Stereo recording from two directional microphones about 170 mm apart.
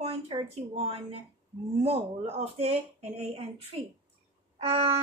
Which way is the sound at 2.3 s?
40° right (ahead or behind).